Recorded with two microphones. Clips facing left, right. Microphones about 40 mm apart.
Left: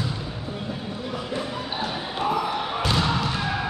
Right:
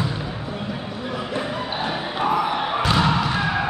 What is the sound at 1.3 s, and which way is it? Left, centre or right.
Basketball bounce, right.